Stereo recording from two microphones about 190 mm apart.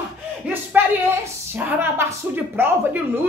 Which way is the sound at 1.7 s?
10° right (ahead or behind).